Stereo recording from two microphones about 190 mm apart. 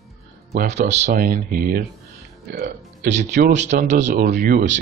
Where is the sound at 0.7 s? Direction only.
35° right (ahead or behind).